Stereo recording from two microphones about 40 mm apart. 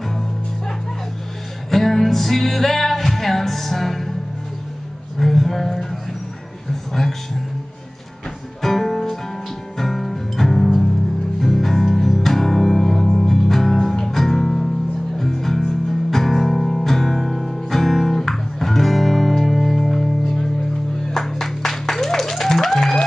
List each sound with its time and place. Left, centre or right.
1.7 s music: centre
5.2 s a sound: centre
6.9 s speech: centre
8.6 s music: centre